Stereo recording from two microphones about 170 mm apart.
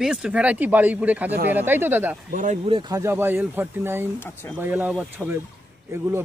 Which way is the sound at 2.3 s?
50° right (ahead or behind).